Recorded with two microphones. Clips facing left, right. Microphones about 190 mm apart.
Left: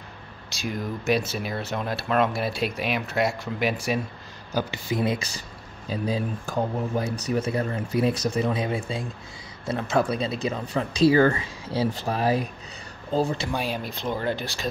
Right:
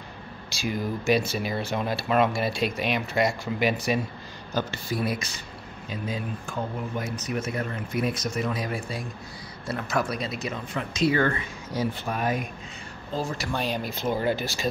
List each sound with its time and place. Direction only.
0.5 s speech: centre (ahead or behind); by 5.2 s 20° left (ahead or behind)
5.9 s speech: 35° left (ahead or behind)
13.5 s speech: 5° left (ahead or behind)